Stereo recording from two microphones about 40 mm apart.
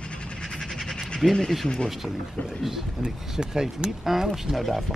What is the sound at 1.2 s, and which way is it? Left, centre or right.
Speech, centre.